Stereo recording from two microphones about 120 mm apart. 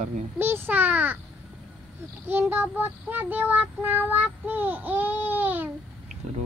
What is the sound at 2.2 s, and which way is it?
Child singing, 15° right (ahead or behind).